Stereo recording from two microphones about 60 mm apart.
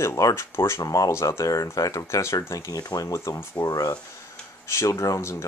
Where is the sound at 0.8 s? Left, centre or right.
Left.